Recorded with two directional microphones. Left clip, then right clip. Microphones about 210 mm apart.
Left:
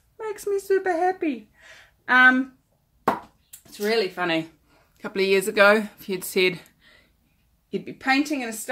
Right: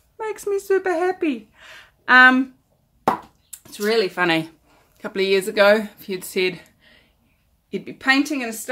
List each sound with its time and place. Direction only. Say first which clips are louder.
0.2 s speech: right 3 dB; 5° right (ahead or behind)
4.1 s speech: right 5 dB; 30° right (ahead or behind)
4.9 s speech: right 2 dB; 5° left (ahead or behind); by 7.0 s 25° left (ahead or behind)
7.7 s a woman's voice: right 4 dB; 5° left (ahead or behind)